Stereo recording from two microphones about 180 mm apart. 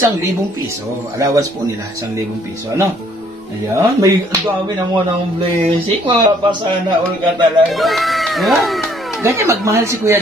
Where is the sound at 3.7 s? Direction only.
20° right (ahead or behind).